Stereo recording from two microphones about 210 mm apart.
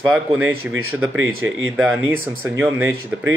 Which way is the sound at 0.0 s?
5° right (ahead or behind).